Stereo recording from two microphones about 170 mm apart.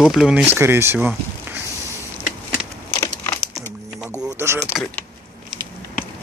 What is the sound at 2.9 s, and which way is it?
Crumpling, 15° left (ahead or behind).